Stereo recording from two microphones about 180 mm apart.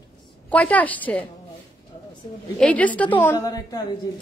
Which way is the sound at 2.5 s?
10° left (ahead or behind).